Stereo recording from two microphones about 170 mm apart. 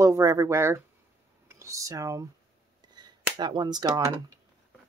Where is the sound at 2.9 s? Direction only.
25° right (ahead or behind).